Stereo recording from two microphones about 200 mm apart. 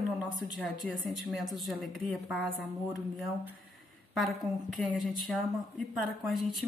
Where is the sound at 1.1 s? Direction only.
Centre (ahead or behind).